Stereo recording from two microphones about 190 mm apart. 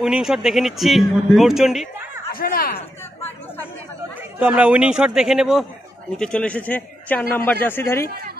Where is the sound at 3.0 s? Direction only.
10° left (ahead or behind).